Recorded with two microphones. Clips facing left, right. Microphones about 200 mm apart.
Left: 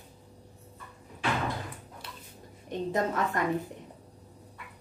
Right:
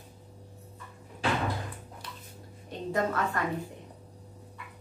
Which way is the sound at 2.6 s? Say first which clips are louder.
Left 1 dB; 20° left (ahead or behind).